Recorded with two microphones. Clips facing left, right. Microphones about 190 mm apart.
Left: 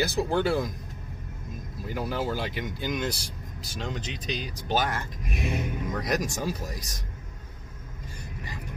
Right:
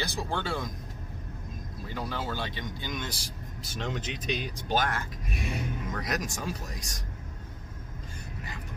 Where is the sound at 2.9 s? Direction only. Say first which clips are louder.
Left 9 dB; centre (ahead or behind).